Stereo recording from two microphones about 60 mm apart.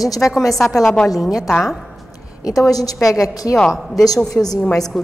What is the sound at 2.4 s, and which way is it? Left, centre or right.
A woman's voice, left.